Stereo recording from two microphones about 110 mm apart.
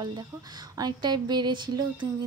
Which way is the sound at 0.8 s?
40° right (ahead or behind).